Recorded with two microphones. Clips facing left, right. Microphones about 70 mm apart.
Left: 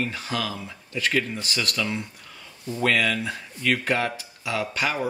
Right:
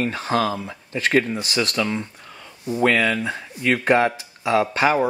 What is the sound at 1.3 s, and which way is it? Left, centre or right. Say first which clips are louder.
Speech: right 5 dB; right.